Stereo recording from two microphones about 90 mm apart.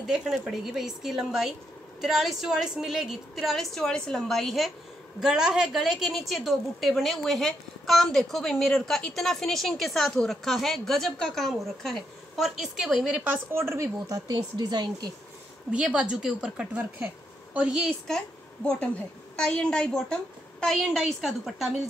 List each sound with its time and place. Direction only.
0.0 s a woman's voice: 5° right (ahead or behind)
13.5 s speech: 30° right (ahead or behind)
14.3 s speech: 55° right (ahead or behind)
15.7 s a woman's voice: 10° right (ahead or behind)
18.0 s a woman's voice: 10° left (ahead or behind)